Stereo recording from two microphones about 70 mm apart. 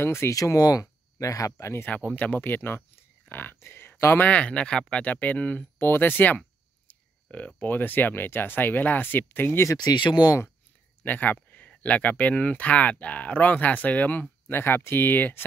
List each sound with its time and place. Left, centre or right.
0.0 s speech: left
0.3 s speech: left
1.9 s speech: left
4.3 s speech: centre
5.8 s speech: left
9.8 s speech: left
11.1 s speech: left